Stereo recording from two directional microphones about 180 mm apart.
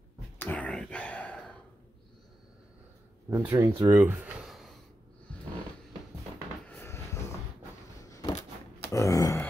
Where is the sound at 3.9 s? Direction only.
10° right (ahead or behind).